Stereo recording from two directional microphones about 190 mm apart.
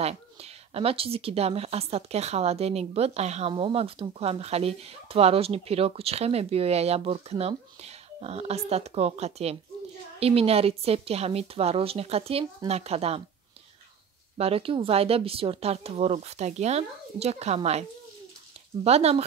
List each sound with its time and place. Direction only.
0.0 s speech: 30° right (ahead or behind)
14.3 s speech: 30° right (ahead or behind)
18.9 s speech: 35° right (ahead or behind)